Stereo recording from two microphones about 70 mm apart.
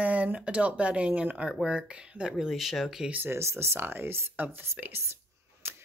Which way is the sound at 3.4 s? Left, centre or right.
Right.